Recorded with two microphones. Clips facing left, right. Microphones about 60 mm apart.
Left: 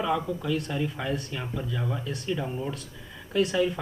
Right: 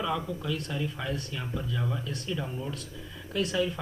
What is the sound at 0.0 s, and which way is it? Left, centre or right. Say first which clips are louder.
Speech: left 4 dB; left.